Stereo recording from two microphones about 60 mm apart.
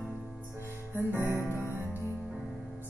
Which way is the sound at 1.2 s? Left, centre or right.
Left.